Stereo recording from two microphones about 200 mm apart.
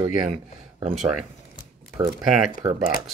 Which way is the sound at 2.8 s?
45° left (ahead or behind).